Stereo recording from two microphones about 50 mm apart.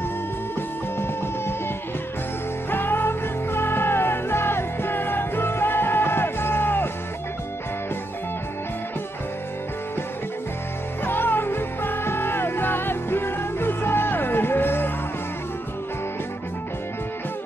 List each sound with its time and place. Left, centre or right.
0.6 s music: left
2.7 s music: left
11.1 s music: left